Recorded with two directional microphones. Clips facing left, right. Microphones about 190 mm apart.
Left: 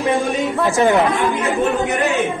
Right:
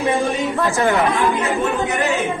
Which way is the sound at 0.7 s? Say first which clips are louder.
Left 4 dB; 15° left (ahead or behind).